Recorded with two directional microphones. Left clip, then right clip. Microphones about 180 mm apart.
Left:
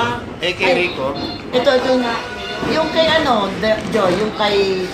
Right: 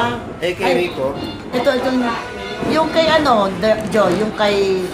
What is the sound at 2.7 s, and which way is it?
Speech, 60° right (ahead or behind).